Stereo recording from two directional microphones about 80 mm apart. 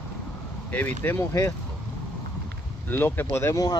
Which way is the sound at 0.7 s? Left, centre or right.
Left.